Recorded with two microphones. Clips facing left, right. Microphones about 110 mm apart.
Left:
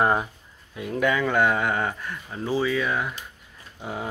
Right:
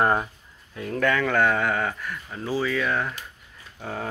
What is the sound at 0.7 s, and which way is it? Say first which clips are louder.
Speech: even; 15° left (ahead or behind).